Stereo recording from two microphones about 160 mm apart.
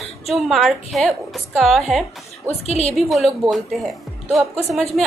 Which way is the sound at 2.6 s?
40° left (ahead or behind).